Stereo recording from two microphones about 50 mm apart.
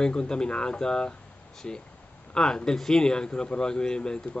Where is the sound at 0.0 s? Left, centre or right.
Centre.